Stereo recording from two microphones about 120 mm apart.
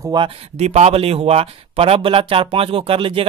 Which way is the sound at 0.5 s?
65° right (ahead or behind).